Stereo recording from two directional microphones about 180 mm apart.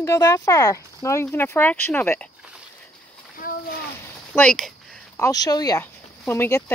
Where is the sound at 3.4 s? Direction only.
50° left (ahead or behind).